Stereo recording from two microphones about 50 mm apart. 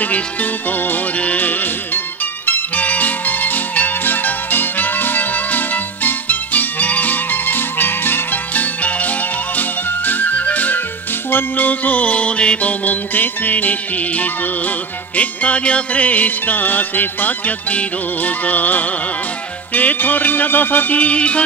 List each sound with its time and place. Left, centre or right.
0.0 s music: left
2.7 s music: left